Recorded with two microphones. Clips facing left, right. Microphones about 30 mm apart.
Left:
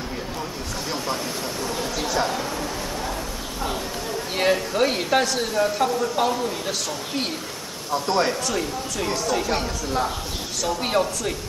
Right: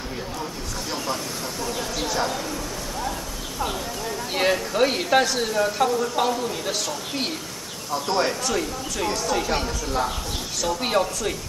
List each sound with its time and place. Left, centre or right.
0.9 s speech: centre
4.4 s speech: centre